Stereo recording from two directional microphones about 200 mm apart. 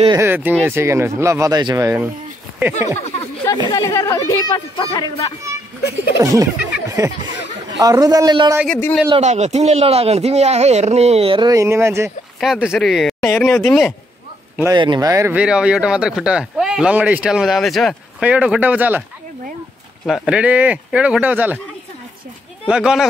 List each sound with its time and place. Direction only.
0.2 s speech: 10° right (ahead or behind)
3.6 s speech: 15° left (ahead or behind)
5.4 s speech: 15° right (ahead or behind)
8.6 s a man's voice: 5° left (ahead or behind)
9.1 s speech: 35° right (ahead or behind); by 12.1 s 15° right (ahead or behind)
12.4 s speech: centre (ahead or behind)
14.6 s speech: 20° right (ahead or behind)
20.1 s speech: centre (ahead or behind)
22.7 s speech: 5° right (ahead or behind)